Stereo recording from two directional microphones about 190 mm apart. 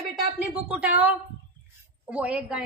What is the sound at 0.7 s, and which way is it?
A woman's voice, 5° right (ahead or behind).